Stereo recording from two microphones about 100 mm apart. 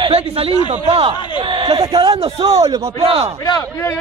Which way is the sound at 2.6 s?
30° right (ahead or behind).